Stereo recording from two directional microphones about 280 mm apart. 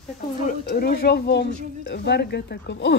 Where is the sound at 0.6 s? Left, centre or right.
Left.